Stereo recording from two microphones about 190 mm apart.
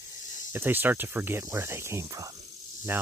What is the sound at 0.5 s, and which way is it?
Speech, 10° right (ahead or behind).